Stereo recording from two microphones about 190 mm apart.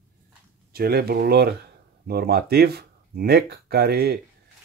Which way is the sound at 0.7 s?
55° right (ahead or behind).